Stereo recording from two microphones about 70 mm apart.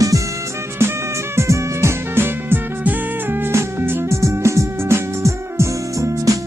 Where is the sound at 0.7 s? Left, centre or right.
Right.